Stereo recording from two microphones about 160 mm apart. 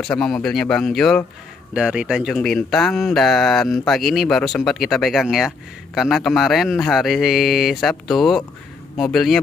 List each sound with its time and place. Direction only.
0.0 s speech: 5° left (ahead or behind)